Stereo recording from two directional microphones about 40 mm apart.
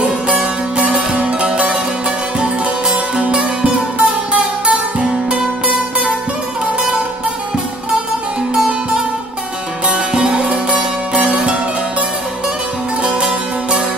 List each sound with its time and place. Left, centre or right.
0.4 s music: right
8.5 s music: centre; by 11.5 s right
13.0 s music: right